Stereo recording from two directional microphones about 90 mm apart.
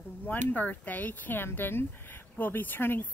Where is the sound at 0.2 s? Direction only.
20° left (ahead or behind).